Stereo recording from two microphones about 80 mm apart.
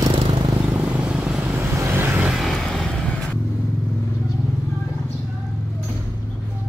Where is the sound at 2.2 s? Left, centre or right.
Centre.